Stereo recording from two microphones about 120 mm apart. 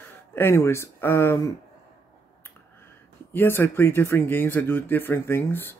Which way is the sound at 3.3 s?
15° left (ahead or behind).